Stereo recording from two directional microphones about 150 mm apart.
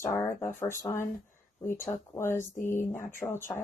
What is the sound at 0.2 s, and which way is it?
Speech, 15° left (ahead or behind).